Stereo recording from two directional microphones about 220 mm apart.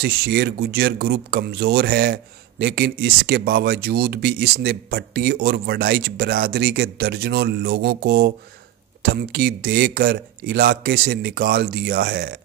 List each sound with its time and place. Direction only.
0.0 s speech: 45° right (ahead or behind)